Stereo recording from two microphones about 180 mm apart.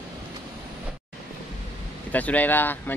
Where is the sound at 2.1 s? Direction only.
10° left (ahead or behind).